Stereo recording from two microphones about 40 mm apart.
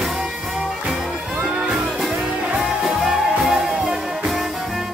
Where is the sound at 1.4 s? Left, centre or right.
Right.